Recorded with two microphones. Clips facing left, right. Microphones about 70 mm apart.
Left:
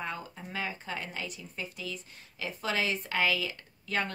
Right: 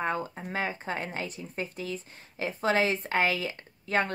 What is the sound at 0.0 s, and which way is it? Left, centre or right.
Speech, right.